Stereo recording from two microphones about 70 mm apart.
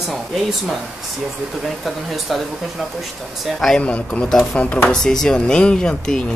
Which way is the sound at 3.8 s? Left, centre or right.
Centre.